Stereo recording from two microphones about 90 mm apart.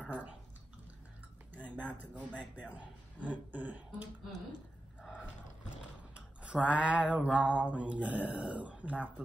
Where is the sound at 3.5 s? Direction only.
20° right (ahead or behind).